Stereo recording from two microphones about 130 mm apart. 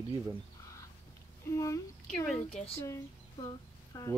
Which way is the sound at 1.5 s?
25° left (ahead or behind).